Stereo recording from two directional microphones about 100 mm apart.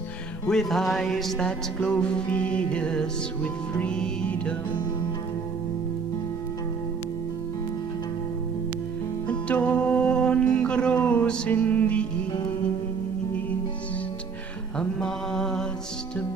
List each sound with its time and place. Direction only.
0.5 s music: 5° left (ahead or behind)
9.3 s music: 15° left (ahead or behind)
14.8 s music: 5° left (ahead or behind)